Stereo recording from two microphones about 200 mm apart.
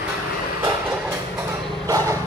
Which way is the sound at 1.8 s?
15° right (ahead or behind).